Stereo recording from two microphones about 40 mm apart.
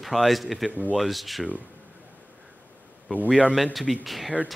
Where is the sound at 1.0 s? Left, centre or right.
Centre.